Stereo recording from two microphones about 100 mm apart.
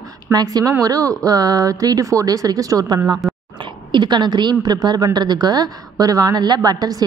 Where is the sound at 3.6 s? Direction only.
50° right (ahead or behind).